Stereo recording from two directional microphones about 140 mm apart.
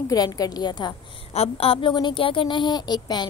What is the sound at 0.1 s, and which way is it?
Speech, 25° left (ahead or behind).